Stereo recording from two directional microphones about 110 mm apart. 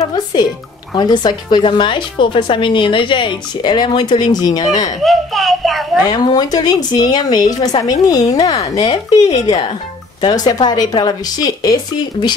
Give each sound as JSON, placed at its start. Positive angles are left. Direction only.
{"t": 0.1, "sound": "a woman's voice", "side_deg": 40}
{"t": 5.0, "sound": "a child's voice", "side_deg": 0}
{"t": 6.0, "sound": "a woman's voice", "side_deg": 40}